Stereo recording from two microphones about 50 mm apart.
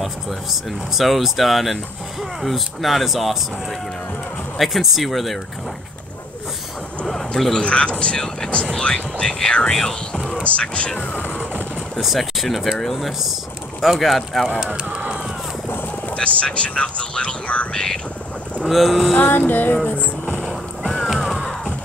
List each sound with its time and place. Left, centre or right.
0.0 s speech: centre
4.6 s speech: centre
7.1 s a sound: centre
7.6 s speech: left
10.4 s speech: left
12.0 s speech: centre
14.9 s run: centre
16.2 s speech: left
18.7 s speech: centre
19.1 s music: left
20.0 s vehicle: right
20.4 s boat: centre